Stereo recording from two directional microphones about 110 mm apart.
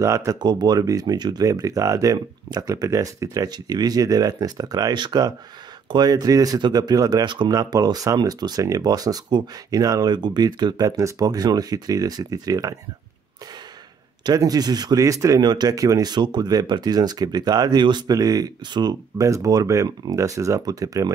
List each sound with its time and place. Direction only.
0.0 s speech: 30° right (ahead or behind)
14.2 s speech: 35° right (ahead or behind)